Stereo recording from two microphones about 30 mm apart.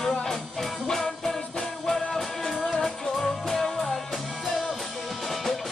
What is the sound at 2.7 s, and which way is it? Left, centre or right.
Music, centre.